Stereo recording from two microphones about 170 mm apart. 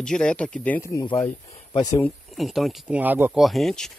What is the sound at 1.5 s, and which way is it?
Speech, 40° left (ahead or behind).